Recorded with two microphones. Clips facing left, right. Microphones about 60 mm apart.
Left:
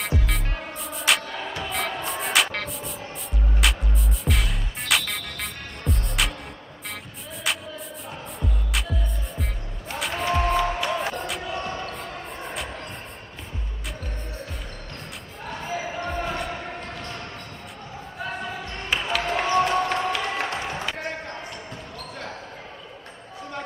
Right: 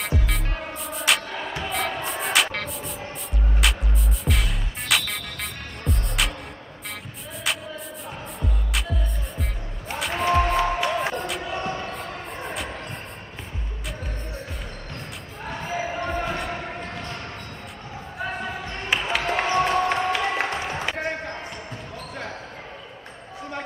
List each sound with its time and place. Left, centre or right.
0.0 s music: centre
7.5 s music: centre
10.1 s music: centre
11.0 s a sound: centre
11.5 s basketball bounce: centre
12.4 s a sound: centre
15.4 s basketball bounce: centre
18.2 s basketball bounce: centre
19.0 s music: centre